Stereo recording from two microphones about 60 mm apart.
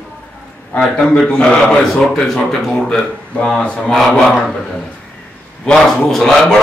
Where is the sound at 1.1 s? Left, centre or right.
Centre.